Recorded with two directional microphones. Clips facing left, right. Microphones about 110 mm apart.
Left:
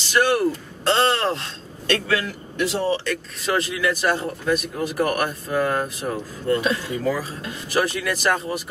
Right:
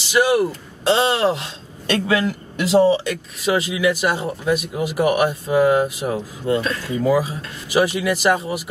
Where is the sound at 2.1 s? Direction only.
20° right (ahead or behind).